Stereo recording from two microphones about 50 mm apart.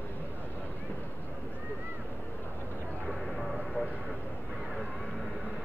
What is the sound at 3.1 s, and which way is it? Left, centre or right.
Vehicle, centre.